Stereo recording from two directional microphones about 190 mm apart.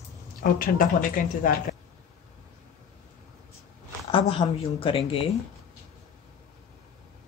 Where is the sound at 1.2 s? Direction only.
45° left (ahead or behind).